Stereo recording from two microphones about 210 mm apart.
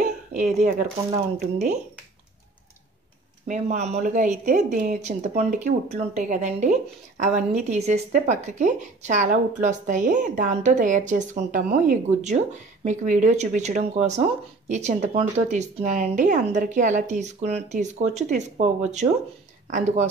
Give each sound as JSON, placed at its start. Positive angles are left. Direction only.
{"t": 0.0, "sound": "a sound", "side_deg": -35}
{"t": 1.4, "sound": "a woman's voice", "side_deg": -35}
{"t": 3.4, "sound": "a woman's voice", "side_deg": -35}